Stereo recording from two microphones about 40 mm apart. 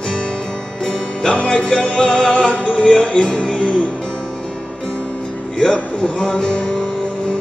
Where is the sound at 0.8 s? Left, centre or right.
Centre.